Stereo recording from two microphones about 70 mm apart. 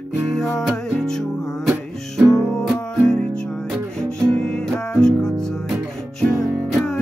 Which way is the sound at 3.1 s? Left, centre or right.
Centre.